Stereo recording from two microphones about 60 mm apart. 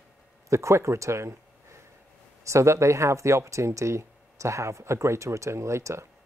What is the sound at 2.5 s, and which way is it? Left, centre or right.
Speech, right.